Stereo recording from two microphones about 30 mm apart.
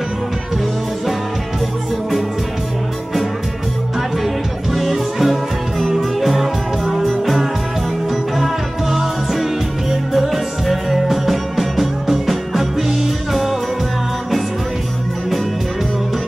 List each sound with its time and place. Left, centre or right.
4.9 s music: centre
8.4 s music: centre